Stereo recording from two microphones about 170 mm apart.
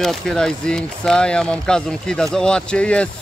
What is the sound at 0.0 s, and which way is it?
Speech, centre (ahead or behind).